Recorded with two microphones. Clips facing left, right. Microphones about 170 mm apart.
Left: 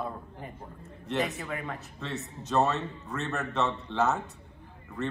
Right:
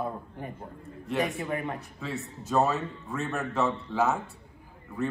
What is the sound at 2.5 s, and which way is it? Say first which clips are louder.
A man's voice: right 1 dB; centre (ahead or behind).